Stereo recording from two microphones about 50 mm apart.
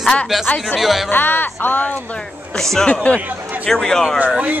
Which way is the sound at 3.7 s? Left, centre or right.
Centre.